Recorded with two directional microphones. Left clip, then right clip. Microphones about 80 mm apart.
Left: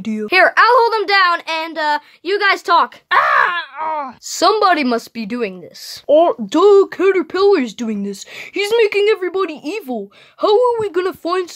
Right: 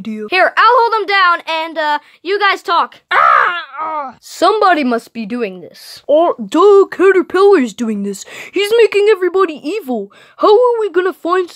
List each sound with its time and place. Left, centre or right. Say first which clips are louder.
0.0 s speech: left 1 dB; centre
0.3 s a woman's voice: right 1 dB; centre
3.1 s groan: right 5 dB; right
4.3 s speech: right 2 dB; centre
4.6 s a woman's voice: right 4 dB; centre
4.8 s speech: right 2 dB; centre
6.0 s speech: right 1 dB; centre; by 10.6 s right
10.6 s speech: right 3 dB; centre